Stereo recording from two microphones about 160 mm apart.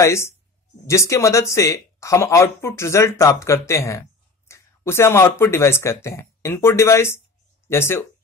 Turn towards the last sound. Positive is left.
turn(degrees=15)  # may be behind; listen again after turning